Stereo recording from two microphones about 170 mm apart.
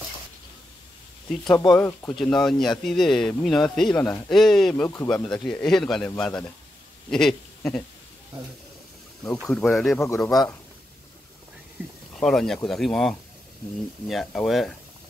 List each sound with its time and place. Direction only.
1.5 s speech: 25° left (ahead or behind)
1.8 s speech: 10° left (ahead or behind)
4.8 s speech: 15° left (ahead or behind)
5.1 s speech: 5° left (ahead or behind)
9.2 s speech: 5° left (ahead or behind)
9.9 s speech: 15° left (ahead or behind)
11.8 s speech: 10° right (ahead or behind)
12.2 s speech: 5° left (ahead or behind)